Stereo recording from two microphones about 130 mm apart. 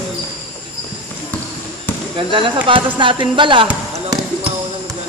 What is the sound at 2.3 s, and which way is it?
Speech, 40° right (ahead or behind).